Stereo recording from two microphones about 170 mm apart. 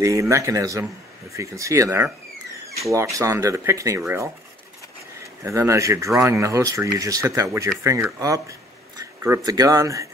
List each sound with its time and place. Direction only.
0.0 s speech: 20° right (ahead or behind)
5.2 s speech: 15° right (ahead or behind)